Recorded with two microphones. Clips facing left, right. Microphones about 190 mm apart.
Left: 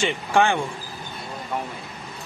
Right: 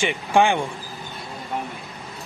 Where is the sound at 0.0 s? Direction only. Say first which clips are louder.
Right 1 dB; 15° right (ahead or behind).